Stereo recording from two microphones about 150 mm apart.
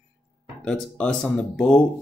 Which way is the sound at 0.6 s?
5° left (ahead or behind).